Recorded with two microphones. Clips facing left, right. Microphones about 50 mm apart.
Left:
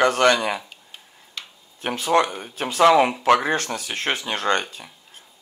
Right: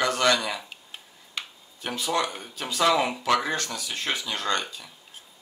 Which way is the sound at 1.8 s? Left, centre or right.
Left.